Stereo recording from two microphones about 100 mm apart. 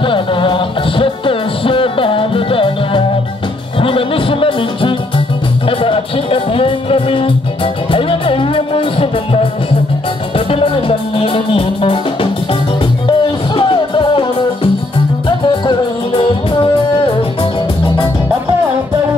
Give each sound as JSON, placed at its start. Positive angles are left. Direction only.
{"t": 0.0, "sound": "music", "side_deg": 60}
{"t": 13.0, "sound": "music", "side_deg": 55}